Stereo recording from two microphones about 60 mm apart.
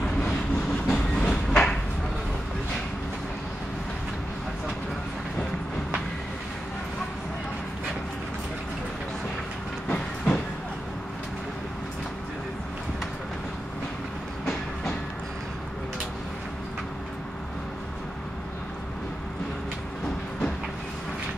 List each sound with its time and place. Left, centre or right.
0.8 s train: centre
9.8 s train: left